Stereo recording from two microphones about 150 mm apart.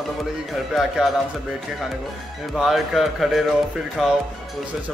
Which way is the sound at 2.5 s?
Centre (ahead or behind).